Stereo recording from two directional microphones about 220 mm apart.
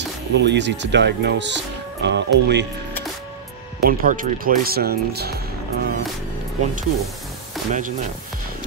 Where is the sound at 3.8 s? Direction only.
40° right (ahead or behind).